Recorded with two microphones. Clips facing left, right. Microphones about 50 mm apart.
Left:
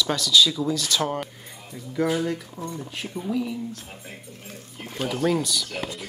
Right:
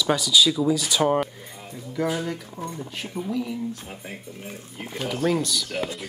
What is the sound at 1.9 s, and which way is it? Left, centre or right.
Speech, centre.